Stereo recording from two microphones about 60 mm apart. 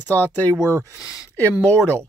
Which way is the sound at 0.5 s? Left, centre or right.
Right.